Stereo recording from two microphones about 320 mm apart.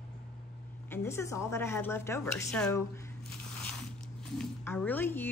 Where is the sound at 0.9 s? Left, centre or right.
Centre.